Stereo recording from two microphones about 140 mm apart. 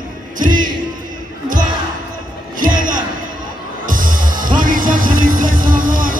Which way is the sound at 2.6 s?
75° right (ahead or behind).